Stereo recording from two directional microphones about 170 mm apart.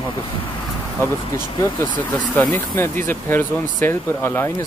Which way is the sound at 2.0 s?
10° left (ahead or behind).